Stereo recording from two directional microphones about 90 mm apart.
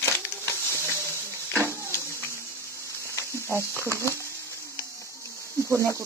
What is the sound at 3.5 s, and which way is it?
Speech, 30° right (ahead or behind).